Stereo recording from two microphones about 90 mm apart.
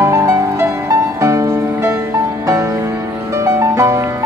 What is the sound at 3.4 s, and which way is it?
Music, 35° right (ahead or behind).